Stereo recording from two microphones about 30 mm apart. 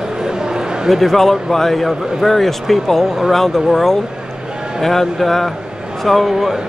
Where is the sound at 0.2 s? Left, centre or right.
Right.